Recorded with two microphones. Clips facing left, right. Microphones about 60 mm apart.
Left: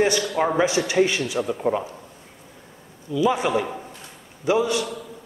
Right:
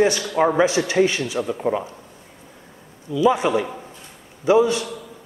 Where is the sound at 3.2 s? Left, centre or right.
Right.